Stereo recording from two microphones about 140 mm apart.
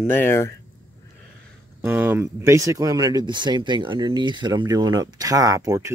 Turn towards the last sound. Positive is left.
turn(degrees=-20)  # may be behind; listen again after turning